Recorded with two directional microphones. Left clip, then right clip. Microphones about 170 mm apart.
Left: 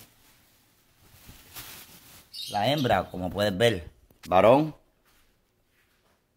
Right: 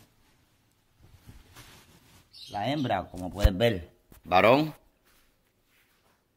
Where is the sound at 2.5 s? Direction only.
40° left (ahead or behind).